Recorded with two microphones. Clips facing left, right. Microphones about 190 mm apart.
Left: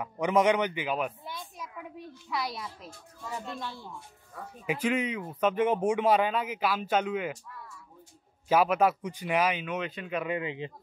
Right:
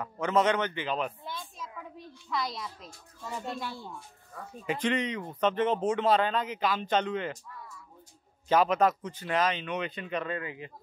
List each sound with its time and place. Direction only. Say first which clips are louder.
0.0 s a woman's voice: left 2 dB; 15° left (ahead or behind)
8.5 s a woman's voice: even; 10° left (ahead or behind)
10.2 s speech: left 3 dB; 20° left (ahead or behind)